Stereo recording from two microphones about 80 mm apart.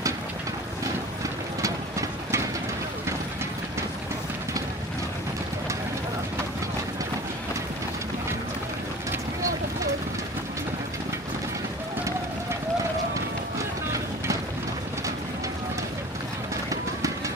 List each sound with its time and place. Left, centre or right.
1.6 s engine: right